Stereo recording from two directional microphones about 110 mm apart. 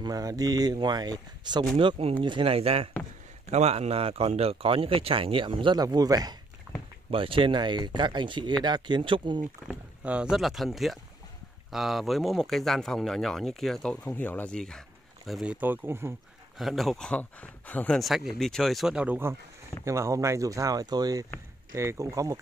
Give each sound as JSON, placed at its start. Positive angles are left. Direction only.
{"t": 0.0, "sound": "speech", "side_deg": -35}
{"t": 1.8, "sound": "speech", "side_deg": -55}
{"t": 3.4, "sound": "speech", "side_deg": -85}
{"t": 5.8, "sound": "speech", "side_deg": -35}
{"t": 6.7, "sound": "a sound", "side_deg": -10}
{"t": 7.1, "sound": "speech", "side_deg": -55}
{"t": 9.7, "sound": "speech", "side_deg": -10}
{"t": 14.0, "sound": "speech", "side_deg": 15}
{"t": 15.4, "sound": "speech", "side_deg": -15}
{"t": 16.5, "sound": "speech", "side_deg": 0}
{"t": 17.9, "sound": "speech", "side_deg": 0}
{"t": 18.9, "sound": "speech", "side_deg": -15}
{"t": 19.8, "sound": "speech", "side_deg": -25}